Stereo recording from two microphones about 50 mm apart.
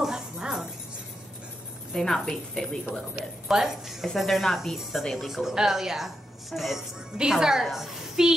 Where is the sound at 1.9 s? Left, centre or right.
Centre.